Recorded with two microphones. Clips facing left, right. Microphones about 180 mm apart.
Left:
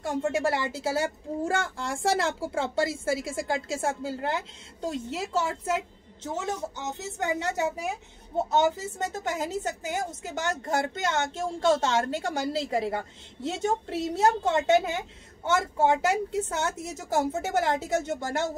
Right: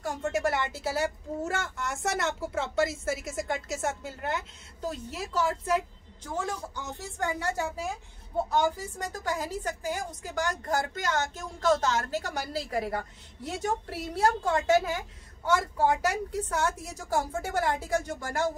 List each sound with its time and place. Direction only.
0.0 s a woman's voice: 25° left (ahead or behind)